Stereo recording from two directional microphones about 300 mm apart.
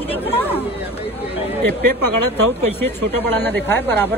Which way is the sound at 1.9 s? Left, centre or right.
Right.